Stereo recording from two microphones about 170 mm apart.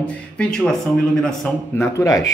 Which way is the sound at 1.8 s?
20° left (ahead or behind).